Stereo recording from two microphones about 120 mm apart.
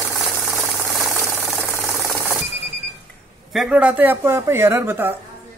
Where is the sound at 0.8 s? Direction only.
25° right (ahead or behind).